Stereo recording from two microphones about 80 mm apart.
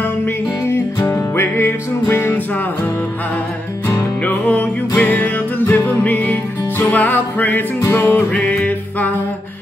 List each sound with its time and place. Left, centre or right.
0.7 s music: left
4.2 s music: centre